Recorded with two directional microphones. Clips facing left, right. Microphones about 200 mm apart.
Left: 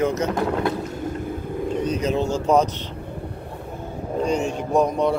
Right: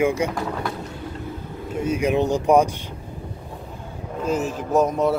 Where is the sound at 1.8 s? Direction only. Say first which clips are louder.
Right 3 dB; 10° right (ahead or behind).